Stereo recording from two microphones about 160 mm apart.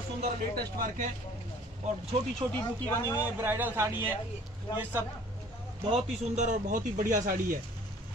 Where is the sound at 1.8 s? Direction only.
45° right (ahead or behind).